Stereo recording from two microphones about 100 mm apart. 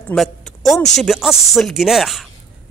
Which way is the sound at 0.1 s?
5° left (ahead or behind).